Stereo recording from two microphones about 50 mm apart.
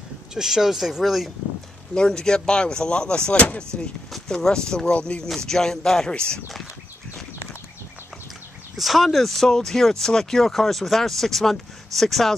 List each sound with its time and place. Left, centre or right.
0.3 s speech: centre
2.0 s speech: centre
4.3 s speech: centre
5.3 s speech: centre
8.7 s speech: centre